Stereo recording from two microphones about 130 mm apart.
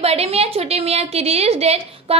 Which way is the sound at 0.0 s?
50° right (ahead or behind).